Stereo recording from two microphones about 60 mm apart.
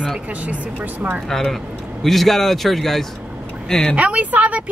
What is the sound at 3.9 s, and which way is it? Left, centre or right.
Speech, right.